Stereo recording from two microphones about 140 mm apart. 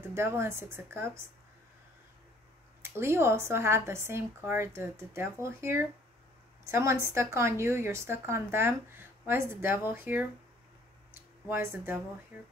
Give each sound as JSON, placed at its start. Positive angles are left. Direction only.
{"t": 0.1, "sound": "speech", "side_deg": -20}
{"t": 2.8, "sound": "speech", "side_deg": -20}
{"t": 11.4, "sound": "speech", "side_deg": -15}